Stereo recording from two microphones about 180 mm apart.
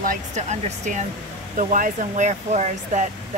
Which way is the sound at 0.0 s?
45° right (ahead or behind).